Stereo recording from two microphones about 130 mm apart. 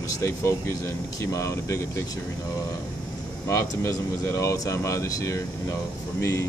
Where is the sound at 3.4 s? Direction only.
20° left (ahead or behind).